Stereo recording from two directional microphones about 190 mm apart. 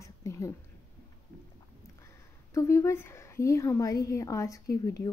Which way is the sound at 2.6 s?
15° left (ahead or behind).